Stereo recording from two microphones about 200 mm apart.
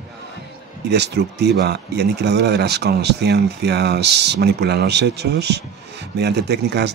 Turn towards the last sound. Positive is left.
turn(degrees=-55)  # may be behind; listen again after turning